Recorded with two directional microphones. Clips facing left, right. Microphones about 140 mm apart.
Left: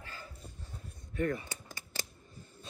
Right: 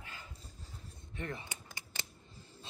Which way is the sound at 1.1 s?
25° right (ahead or behind).